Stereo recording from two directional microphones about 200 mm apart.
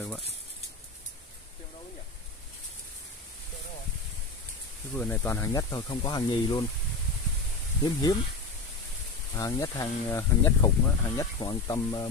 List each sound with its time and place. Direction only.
4.9 s speech: 10° left (ahead or behind)
7.8 s speech: 20° left (ahead or behind)
9.3 s speech: 15° left (ahead or behind)